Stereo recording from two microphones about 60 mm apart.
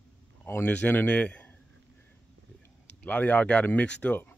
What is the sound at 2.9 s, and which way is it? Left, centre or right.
Speech, left.